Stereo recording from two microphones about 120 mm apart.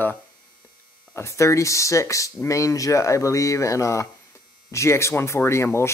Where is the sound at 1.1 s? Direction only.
25° left (ahead or behind).